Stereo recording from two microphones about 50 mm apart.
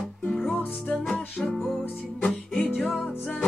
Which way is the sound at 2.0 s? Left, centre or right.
Centre.